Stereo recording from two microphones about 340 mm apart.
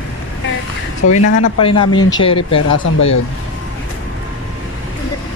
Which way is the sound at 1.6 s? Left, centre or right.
Centre.